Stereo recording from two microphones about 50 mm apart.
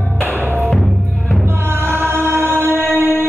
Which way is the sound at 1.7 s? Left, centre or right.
Right.